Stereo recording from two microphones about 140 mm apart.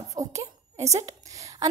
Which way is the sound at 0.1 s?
25° right (ahead or behind).